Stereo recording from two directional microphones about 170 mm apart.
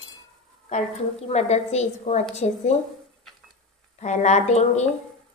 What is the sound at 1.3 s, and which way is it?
A woman's voice, 40° left (ahead or behind).